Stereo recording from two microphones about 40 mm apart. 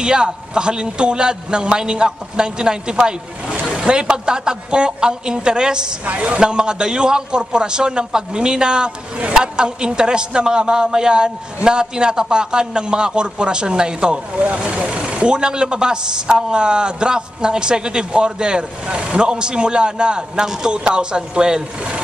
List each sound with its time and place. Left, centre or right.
0.0 s a man's voice: right
6.1 s a man's voice: right